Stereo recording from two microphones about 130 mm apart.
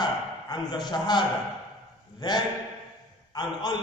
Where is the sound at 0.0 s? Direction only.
30° left (ahead or behind).